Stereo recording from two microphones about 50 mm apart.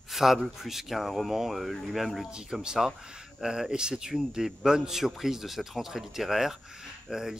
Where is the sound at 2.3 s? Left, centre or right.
Centre.